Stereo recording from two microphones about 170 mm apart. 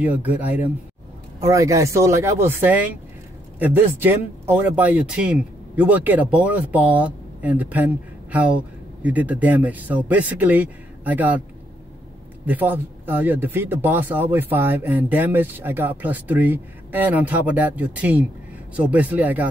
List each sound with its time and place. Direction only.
0.0 s speech: 10° right (ahead or behind)
12.4 s speech: 10° right (ahead or behind)